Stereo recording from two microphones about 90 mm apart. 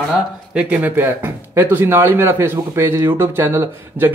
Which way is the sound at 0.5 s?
15° right (ahead or behind).